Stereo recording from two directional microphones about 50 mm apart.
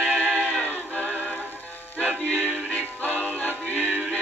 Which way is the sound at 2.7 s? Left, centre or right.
Left.